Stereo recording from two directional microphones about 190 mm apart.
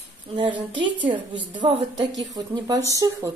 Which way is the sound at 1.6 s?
25° right (ahead or behind).